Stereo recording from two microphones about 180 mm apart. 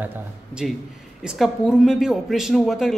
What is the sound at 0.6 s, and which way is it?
Speech, centre (ahead or behind).